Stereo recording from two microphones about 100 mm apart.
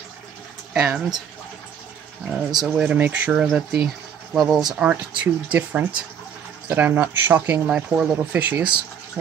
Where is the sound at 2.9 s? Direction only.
15° right (ahead or behind).